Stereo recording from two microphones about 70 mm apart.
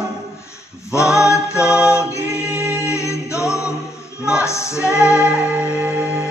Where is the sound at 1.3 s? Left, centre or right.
Left.